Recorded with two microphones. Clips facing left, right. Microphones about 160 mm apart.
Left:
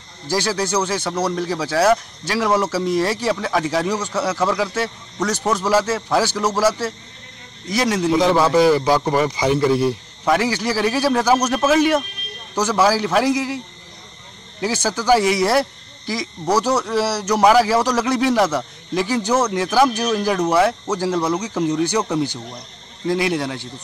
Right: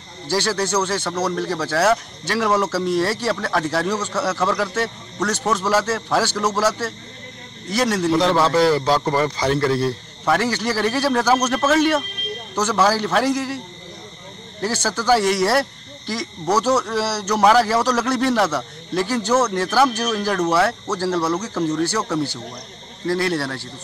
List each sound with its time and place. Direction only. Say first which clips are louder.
0.3 s speech: even; 10° left (ahead or behind)
14.6 s speech: left 1 dB; 15° left (ahead or behind)